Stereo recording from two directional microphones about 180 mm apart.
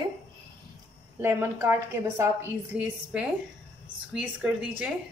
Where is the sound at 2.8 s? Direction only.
5° right (ahead or behind).